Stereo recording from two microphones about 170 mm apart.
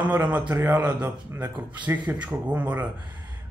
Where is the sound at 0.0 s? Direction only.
10° right (ahead or behind).